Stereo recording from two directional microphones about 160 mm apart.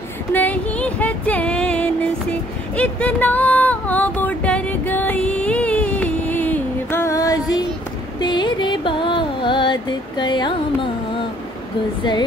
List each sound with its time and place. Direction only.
0.3 s a sound: 10° left (ahead or behind)
8.2 s music: 30° left (ahead or behind)
12.0 s a woman's voice: 25° left (ahead or behind)